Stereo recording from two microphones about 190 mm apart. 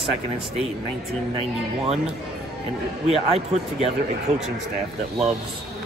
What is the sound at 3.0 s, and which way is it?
Speech, 35° right (ahead or behind).